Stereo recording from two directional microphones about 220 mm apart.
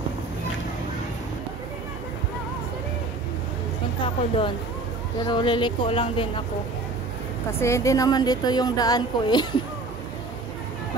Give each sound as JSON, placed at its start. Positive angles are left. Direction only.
{"t": 4.0, "sound": "speech", "side_deg": 25}
{"t": 7.6, "sound": "speech", "side_deg": 15}